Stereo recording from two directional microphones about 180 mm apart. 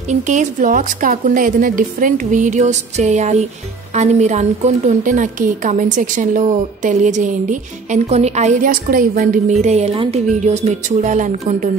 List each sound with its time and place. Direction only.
0.1 s a woman's voice: 40° right (ahead or behind)